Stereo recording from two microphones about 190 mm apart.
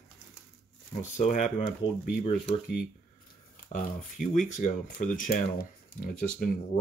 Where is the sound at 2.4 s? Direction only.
5° right (ahead or behind).